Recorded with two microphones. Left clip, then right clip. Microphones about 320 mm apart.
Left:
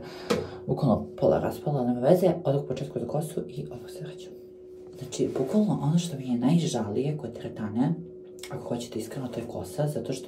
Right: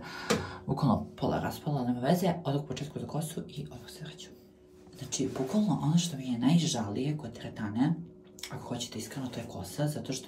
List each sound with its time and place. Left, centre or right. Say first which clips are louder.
0.7 s speech: left 5 dB; centre
5.1 s speech: left 6 dB; centre